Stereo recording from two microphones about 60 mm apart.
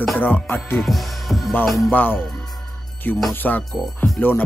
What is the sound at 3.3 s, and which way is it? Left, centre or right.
Speech, left.